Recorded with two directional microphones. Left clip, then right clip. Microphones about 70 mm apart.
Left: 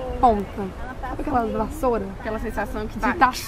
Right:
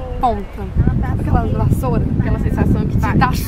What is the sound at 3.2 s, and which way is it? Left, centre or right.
Speech, centre.